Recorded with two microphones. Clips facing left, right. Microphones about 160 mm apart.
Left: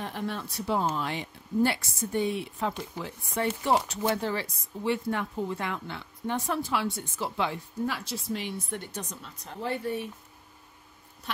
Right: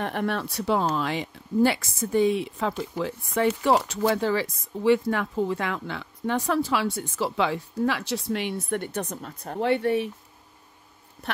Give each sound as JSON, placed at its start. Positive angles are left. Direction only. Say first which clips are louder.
{"t": 0.0, "sound": "speech", "louder": "right 6 dB", "side_deg": -65}